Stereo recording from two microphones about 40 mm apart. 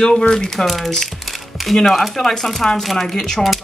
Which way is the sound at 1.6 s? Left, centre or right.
Centre.